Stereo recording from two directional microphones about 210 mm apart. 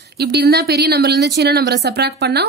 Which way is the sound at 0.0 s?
50° right (ahead or behind).